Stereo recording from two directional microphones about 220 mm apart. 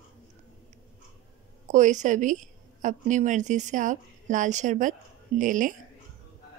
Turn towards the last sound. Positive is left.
turn(degrees=-35)  # may be behind; listen again after turning